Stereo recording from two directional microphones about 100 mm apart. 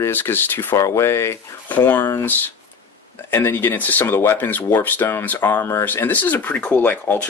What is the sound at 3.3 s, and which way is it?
Speech, 25° left (ahead or behind).